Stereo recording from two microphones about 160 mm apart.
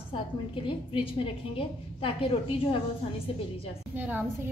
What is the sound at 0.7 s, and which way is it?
A woman's voice, 35° left (ahead or behind).